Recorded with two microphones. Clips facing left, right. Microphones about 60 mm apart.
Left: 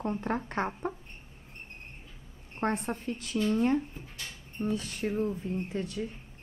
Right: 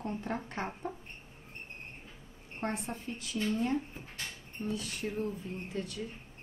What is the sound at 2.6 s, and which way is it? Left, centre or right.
Speech, left.